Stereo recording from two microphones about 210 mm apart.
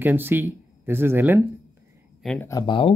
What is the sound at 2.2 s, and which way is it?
Speech, centre (ahead or behind).